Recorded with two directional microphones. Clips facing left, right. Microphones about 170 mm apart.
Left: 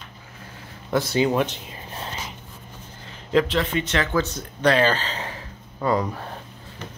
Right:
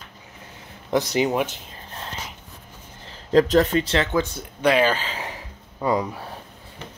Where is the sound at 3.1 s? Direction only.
40° right (ahead or behind).